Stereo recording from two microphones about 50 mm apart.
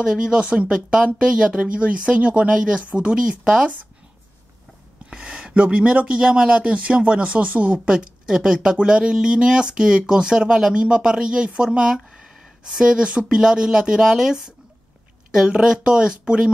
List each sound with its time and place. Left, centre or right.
0.0 s speech: centre
5.1 s speech: centre
12.1 s gasp: centre
12.6 s speech: centre